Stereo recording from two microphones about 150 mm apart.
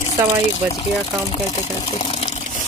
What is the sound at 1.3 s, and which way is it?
Speech, 40° left (ahead or behind).